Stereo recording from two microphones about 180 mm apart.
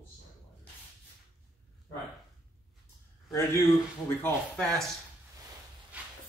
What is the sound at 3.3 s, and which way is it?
Speech, 15° left (ahead or behind).